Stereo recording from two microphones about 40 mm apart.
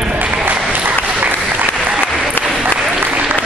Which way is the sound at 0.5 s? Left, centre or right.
Right.